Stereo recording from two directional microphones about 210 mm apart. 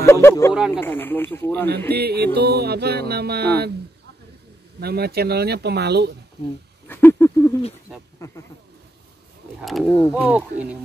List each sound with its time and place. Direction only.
0.0 s speech: 15° left (ahead or behind)
0.6 s speech: 5° right (ahead or behind)
0.8 s speech: 10° left (ahead or behind)
1.9 s music: 50° right (ahead or behind)
4.7 s music: 50° right (ahead or behind)
6.9 s a sound: 10° left (ahead or behind)
8.2 s speech: 15° left (ahead or behind)
9.6 s speech: centre (ahead or behind)
9.8 s speech: 15° left (ahead or behind)
10.1 s speech: 5° right (ahead or behind)